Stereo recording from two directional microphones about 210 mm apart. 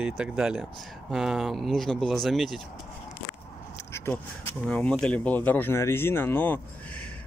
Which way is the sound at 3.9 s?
10° left (ahead or behind).